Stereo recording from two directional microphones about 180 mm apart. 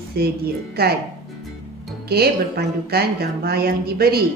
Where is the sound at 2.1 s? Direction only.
60° right (ahead or behind).